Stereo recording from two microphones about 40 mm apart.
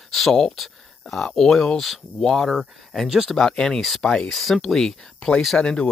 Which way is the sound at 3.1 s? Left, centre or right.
Centre.